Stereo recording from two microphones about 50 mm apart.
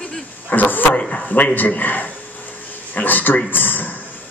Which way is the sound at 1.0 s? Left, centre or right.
Left.